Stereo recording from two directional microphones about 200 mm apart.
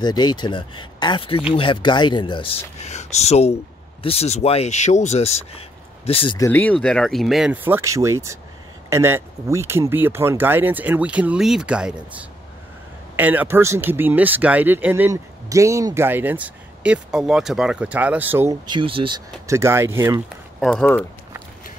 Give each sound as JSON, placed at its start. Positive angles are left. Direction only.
{"t": 0.0, "sound": "speech", "side_deg": 20}
{"t": 20.6, "sound": "speech", "side_deg": 5}